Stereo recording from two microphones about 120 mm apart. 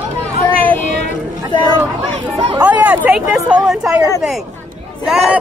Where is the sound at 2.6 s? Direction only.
15° right (ahead or behind).